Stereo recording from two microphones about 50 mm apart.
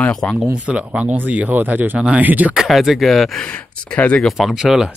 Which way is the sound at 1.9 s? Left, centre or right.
Right.